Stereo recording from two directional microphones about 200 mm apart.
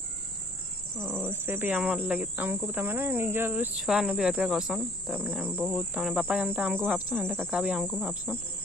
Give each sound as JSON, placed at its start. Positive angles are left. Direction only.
{"t": 0.9, "sound": "speech", "side_deg": -10}
{"t": 5.6, "sound": "cricket", "side_deg": -5}